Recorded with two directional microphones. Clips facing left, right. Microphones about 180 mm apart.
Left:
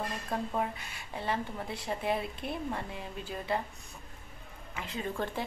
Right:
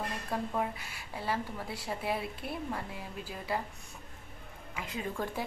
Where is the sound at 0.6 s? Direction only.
5° right (ahead or behind).